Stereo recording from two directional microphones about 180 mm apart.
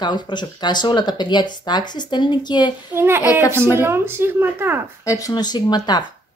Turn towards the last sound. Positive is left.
turn(degrees=25)  # may be behind; listen again after turning